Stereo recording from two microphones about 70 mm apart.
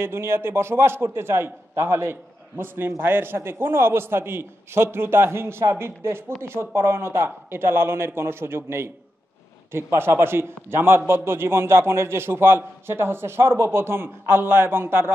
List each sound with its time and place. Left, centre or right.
0.0 s a man's voice: right